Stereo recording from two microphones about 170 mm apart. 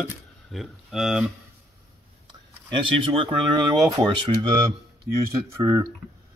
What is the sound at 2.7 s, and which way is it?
Speech, 30° right (ahead or behind).